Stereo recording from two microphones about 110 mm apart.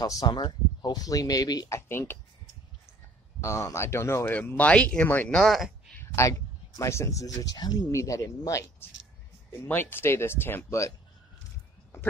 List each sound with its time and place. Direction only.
0.0 s speech: 30° left (ahead or behind)
0.3 s speech: 40° left (ahead or behind)
1.8 s speech: 20° left (ahead or behind)
3.3 s speech: 25° left (ahead or behind)
4.4 s speech: 15° left (ahead or behind)
5.3 s speech: centre (ahead or behind)
5.9 s a sound: 25° left (ahead or behind)
6.8 s speech: 25° left (ahead or behind)
9.5 s speech: 20° left (ahead or behind)